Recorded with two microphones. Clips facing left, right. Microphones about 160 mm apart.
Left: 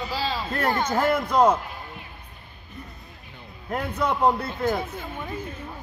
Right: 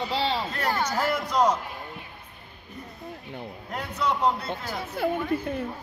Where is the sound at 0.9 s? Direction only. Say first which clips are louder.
Left 4 dB; 55° left (ahead or behind).